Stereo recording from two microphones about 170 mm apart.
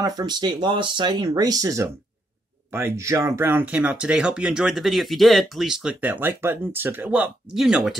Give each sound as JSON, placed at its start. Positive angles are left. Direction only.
{"t": 0.0, "sound": "speech", "side_deg": -25}